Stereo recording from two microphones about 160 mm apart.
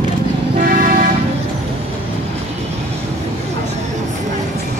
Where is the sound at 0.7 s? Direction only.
55° right (ahead or behind).